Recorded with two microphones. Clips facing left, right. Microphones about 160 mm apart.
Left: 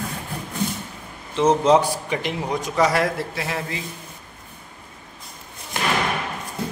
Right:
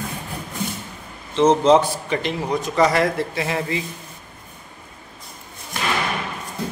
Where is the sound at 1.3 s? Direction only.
10° left (ahead or behind).